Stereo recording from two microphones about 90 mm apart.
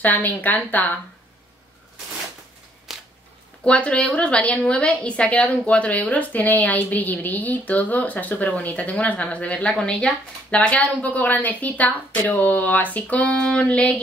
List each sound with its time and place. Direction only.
0.0 s speech: 20° left (ahead or behind)
2.9 s a sound: 5° right (ahead or behind)
3.6 s a woman's voice: 15° left (ahead or behind)